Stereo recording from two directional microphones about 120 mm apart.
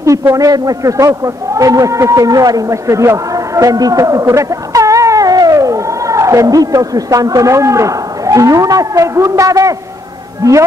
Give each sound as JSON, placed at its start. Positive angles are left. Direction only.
{"t": 0.0, "sound": "a man's voice", "side_deg": -25}